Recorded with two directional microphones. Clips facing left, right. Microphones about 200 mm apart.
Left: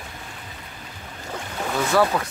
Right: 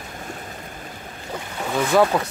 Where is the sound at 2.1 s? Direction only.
25° right (ahead or behind).